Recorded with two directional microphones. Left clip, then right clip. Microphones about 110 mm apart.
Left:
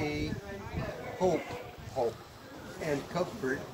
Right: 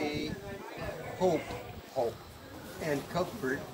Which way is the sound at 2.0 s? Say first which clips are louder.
Even; 30° right (ahead or behind).